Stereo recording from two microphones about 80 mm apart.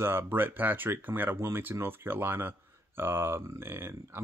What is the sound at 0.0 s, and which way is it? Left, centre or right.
Speech, right.